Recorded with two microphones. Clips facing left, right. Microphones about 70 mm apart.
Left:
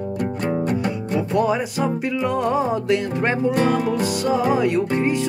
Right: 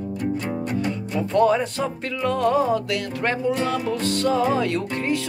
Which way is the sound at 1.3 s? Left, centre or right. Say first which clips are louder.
Right 3 dB; centre.